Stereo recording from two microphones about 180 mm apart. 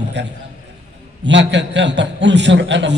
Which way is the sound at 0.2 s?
75° right (ahead or behind).